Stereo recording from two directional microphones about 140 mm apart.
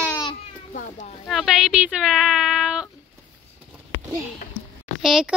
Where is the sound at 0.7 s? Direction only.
70° left (ahead or behind).